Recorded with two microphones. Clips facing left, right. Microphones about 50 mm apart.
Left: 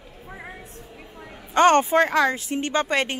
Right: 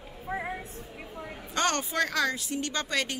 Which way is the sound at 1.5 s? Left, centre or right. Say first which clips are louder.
Left 12 dB; left.